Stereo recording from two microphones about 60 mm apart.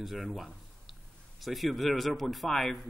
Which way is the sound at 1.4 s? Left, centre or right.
Centre.